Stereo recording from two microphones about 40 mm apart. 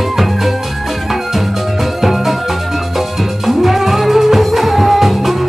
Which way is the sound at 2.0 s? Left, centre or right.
Centre.